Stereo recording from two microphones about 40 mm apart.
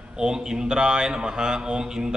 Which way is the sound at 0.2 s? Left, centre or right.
Centre.